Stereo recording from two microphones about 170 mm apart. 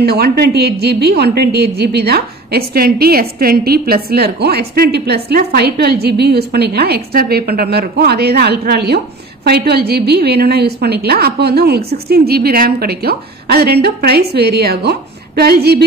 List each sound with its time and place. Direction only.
0.0 s a woman's voice: 65° right (ahead or behind)